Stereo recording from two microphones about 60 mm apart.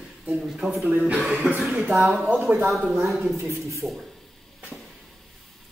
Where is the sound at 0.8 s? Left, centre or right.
Right.